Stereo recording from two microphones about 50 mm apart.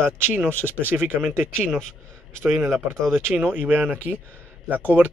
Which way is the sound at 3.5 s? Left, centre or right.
Right.